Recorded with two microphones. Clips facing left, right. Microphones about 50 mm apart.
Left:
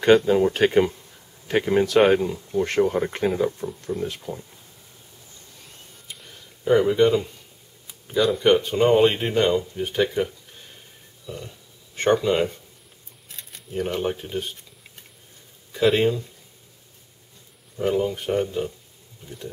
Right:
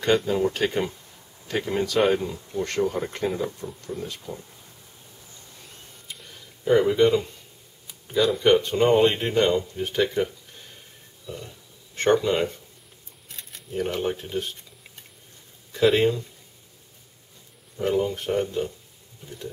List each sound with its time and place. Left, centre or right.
0.3 s speech: left; by 4.4 s centre
6.0 s a sound: centre
7.8 s speech: centre
15.7 s speech: centre
17.7 s speech: centre